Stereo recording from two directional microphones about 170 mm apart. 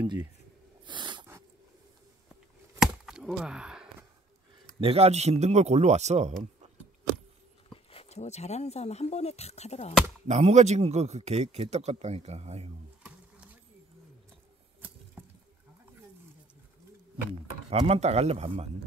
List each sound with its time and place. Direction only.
0.8 s snort: 25° right (ahead or behind)
2.8 s chop: 5° right (ahead or behind)
4.7 s a man's voice: 35° right (ahead or behind)
7.7 s speech: 35° left (ahead or behind)
10.2 s a man's voice: 40° right (ahead or behind)
15.2 s water: 10° right (ahead or behind)
17.6 s a man's voice: 35° right (ahead or behind)